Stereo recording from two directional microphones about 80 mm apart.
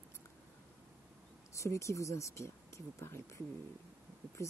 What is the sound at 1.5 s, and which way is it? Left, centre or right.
Speech, left.